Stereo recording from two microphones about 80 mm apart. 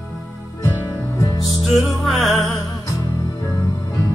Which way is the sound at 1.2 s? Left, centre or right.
Left.